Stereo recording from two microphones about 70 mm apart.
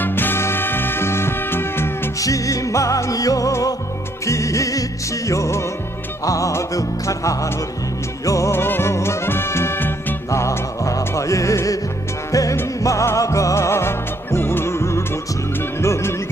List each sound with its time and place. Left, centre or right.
0.0 s music: left
2.1 s music: left
8.5 s music: left
10.3 s music: left